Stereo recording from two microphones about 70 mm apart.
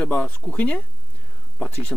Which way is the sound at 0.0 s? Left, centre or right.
Left.